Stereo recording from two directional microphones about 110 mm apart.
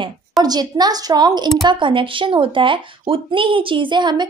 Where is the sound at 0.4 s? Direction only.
40° right (ahead or behind).